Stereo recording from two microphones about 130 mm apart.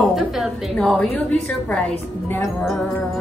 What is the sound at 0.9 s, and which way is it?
A woman's voice, 10° left (ahead or behind).